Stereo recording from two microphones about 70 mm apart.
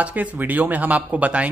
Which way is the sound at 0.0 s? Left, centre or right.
Right.